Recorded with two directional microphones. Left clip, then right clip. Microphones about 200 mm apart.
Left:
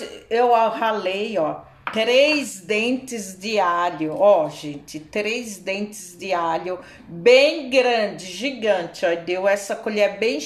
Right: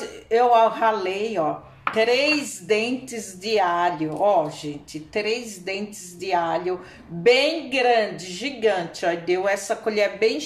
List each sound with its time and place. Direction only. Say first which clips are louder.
0.3 s a woman's voice: even; 25° left (ahead or behind)